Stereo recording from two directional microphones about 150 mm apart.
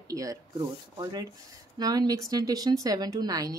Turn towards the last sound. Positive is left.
turn(degrees=-25)  # may be behind; listen again after turning